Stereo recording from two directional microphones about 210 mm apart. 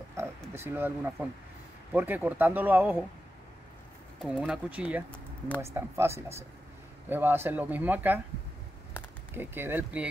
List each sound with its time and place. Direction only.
0.1 s a sound: 10° right (ahead or behind)
1.9 s speech: 10° right (ahead or behind)
4.2 s speech: centre (ahead or behind)
9.3 s speech: 10° right (ahead or behind)